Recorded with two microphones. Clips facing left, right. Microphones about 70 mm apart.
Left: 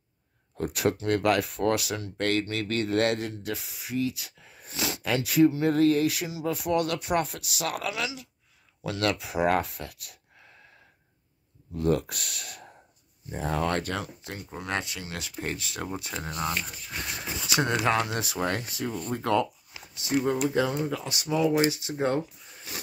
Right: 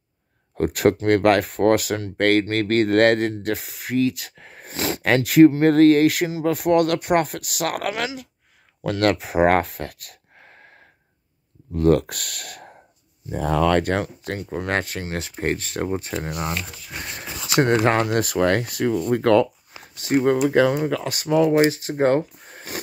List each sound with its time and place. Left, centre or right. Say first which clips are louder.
0.6 s speech: right 8 dB; right
11.7 s speech: right 8 dB; right
13.3 s speech: right 9 dB; right
17.6 s speech: right 7 dB; right
19.8 s a sound: right 7 dB; right
20.2 s speech: right 10 dB; right
21.1 s speech: right 7 dB; right